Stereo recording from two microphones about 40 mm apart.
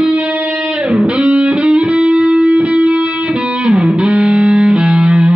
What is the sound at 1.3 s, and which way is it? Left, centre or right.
Music, right.